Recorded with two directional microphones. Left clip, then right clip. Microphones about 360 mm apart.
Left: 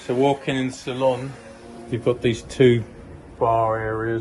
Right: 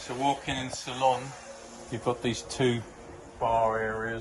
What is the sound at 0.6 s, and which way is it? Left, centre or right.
Speech, right.